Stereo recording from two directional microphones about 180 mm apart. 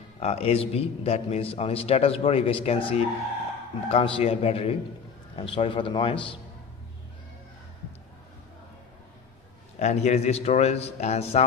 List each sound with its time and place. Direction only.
0.2 s a man's voice: 35° left (ahead or behind)
9.8 s a man's voice: 40° left (ahead or behind)